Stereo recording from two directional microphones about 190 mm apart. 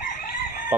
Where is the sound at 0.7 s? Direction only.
10° right (ahead or behind).